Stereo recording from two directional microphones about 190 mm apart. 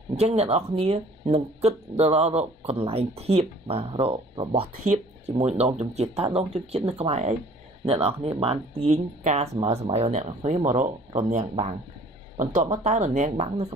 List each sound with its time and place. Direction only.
0.2 s speech: 30° right (ahead or behind)